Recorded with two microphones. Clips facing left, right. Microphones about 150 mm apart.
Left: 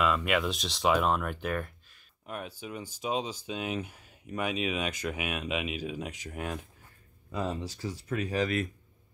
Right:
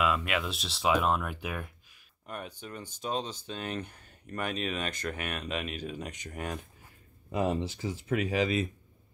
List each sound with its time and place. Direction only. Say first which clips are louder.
0.0 s speech: left 2 dB; centre (ahead or behind)
7.3 s speech: right 4 dB; 15° right (ahead or behind)